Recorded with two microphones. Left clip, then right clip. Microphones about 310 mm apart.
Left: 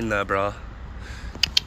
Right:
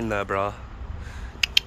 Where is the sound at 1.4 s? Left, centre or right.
Centre.